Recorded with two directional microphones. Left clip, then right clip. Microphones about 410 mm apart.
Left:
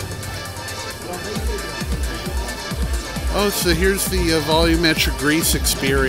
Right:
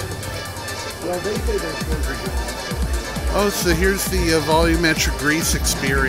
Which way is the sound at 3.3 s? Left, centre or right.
Centre.